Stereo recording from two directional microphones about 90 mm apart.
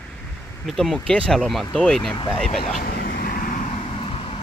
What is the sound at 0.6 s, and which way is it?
Speech, centre (ahead or behind).